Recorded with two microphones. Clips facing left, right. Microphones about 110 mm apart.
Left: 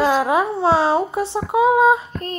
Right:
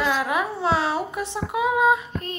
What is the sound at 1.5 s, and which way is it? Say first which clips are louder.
Female singing: left 6 dB; 30° left (ahead or behind).